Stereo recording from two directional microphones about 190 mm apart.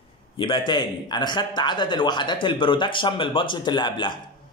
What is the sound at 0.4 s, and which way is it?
A man's voice, 25° left (ahead or behind).